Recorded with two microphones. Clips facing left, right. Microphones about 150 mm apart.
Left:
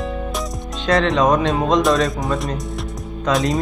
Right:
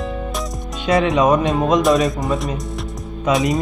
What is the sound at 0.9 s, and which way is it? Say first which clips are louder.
Speech: right 1 dB; 5° right (ahead or behind).